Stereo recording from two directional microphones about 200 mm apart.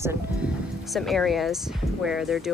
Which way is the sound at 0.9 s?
Centre (ahead or behind).